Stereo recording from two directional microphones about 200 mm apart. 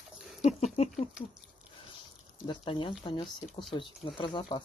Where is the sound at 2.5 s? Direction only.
25° left (ahead or behind).